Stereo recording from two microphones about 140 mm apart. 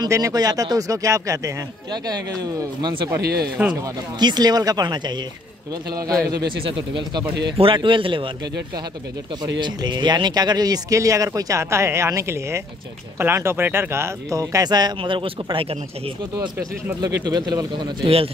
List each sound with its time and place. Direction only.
0.0 s speech: 25° right (ahead or behind)
3.6 s speech: 15° right (ahead or behind)
4.2 s speech: 30° right (ahead or behind)
7.5 s speech: 40° right (ahead or behind)
9.4 s speech: 30° right (ahead or behind)
17.0 s speech: 30° right (ahead or behind)
18.0 s speech: 45° right (ahead or behind)